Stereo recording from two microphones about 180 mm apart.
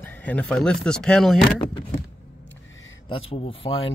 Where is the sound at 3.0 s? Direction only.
30° left (ahead or behind).